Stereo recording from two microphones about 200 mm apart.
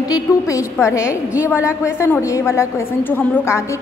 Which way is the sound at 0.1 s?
15° left (ahead or behind).